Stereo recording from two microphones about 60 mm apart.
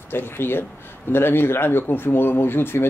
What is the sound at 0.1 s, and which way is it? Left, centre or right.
A man's voice, left.